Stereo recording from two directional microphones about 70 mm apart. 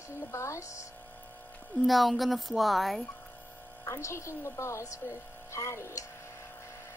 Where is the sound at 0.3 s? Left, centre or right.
Left.